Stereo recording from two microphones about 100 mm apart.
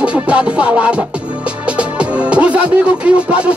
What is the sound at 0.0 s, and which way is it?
Music, 10° right (ahead or behind).